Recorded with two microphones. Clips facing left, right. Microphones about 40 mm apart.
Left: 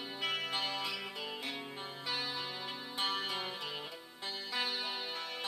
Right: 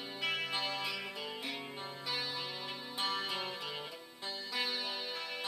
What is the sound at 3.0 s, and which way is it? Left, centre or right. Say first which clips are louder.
Music: left 1 dB; centre.